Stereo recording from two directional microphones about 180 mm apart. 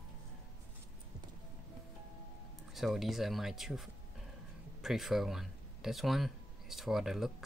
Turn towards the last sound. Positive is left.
turn(degrees=0)  # may be behind; listen again after turning